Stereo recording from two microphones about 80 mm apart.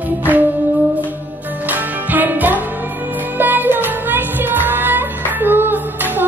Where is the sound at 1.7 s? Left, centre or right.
Right.